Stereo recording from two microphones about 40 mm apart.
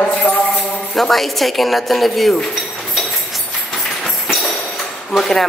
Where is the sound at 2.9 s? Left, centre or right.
Centre.